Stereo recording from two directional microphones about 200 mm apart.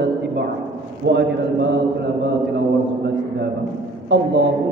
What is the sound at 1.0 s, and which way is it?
Speech, 60° right (ahead or behind).